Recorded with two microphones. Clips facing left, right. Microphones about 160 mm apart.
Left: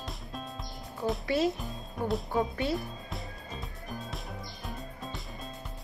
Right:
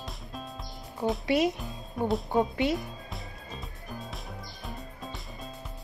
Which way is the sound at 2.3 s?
20° right (ahead or behind).